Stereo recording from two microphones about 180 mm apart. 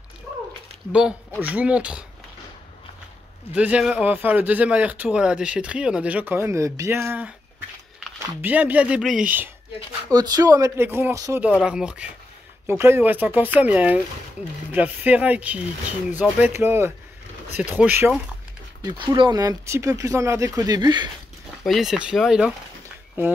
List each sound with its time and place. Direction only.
1.4 s a man's voice: 10° right (ahead or behind)
3.5 s a man's voice: 5° right (ahead or behind)
8.4 s a man's voice: 10° right (ahead or behind)
10.1 s speech: 20° right (ahead or behind)
11.4 s a man's voice: 5° right (ahead or behind)
18.8 s speech: 25° right (ahead or behind)
21.6 s speech: centre (ahead or behind)